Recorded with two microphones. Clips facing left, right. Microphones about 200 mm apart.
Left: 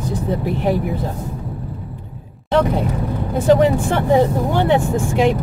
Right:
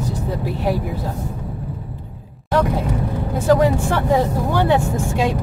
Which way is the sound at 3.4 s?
20° left (ahead or behind).